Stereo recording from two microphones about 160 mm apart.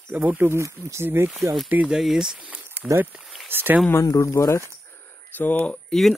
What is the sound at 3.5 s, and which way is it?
Speech, 10° right (ahead or behind).